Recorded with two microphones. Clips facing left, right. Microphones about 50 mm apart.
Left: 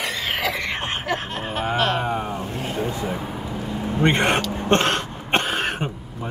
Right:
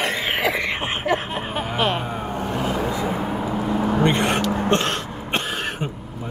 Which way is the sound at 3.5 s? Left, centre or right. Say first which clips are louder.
Right 6 dB; right.